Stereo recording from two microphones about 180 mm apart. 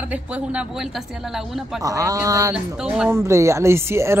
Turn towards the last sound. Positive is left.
turn(degrees=-15)  # may be behind; listen again after turning